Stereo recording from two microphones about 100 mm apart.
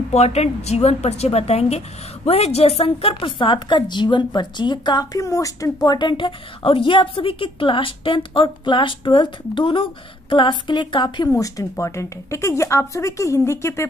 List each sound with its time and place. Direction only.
0.1 s a woman's voice: 90° left; by 5.0 s 50° left (ahead or behind)
5.1 s a woman's voice: 35° left (ahead or behind); by 11.2 s 50° left (ahead or behind)
11.3 s speech: 35° left (ahead or behind)